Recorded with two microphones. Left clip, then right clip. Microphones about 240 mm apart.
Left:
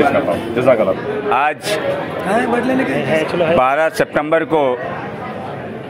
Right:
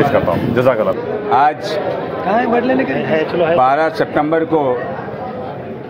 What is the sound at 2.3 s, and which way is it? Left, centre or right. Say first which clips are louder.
Speech: right 2 dB; left.